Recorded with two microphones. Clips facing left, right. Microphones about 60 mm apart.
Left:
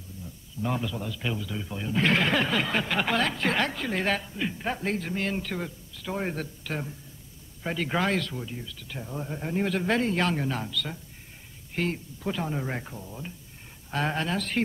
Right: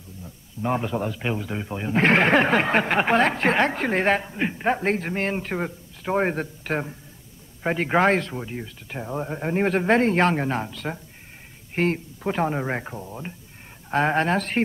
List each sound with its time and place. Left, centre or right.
0.6 s speech: right